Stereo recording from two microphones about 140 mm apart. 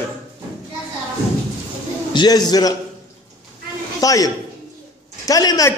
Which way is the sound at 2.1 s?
30° left (ahead or behind).